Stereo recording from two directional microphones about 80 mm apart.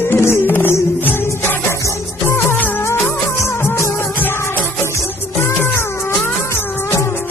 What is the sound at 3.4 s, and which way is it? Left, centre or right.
Music, left.